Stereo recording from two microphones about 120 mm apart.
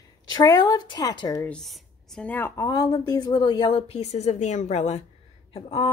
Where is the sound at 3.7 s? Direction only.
55° left (ahead or behind).